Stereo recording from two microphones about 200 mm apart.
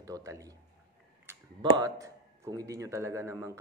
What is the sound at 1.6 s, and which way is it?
Speech, 20° right (ahead or behind).